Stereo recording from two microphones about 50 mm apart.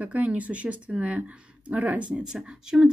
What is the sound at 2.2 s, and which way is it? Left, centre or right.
Speech, centre.